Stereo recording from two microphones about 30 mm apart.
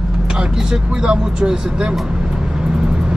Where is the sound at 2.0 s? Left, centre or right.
Right.